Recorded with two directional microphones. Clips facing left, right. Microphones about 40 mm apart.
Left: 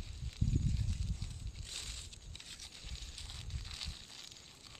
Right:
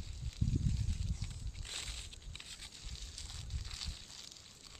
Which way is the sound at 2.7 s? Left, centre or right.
Centre.